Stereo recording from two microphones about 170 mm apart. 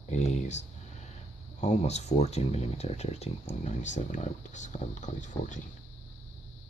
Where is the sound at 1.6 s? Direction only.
40° left (ahead or behind).